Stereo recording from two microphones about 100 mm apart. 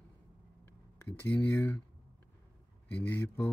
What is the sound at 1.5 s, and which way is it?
Speech, 25° left (ahead or behind).